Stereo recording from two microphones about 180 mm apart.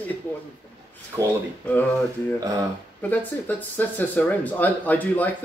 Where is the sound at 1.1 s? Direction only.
20° right (ahead or behind).